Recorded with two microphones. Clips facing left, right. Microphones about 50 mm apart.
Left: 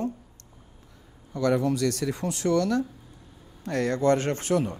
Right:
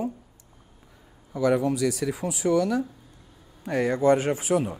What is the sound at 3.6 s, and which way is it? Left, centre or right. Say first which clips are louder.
Speech: right 2 dB; centre.